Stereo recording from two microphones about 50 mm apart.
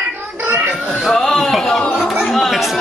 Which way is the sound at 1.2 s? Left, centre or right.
Centre.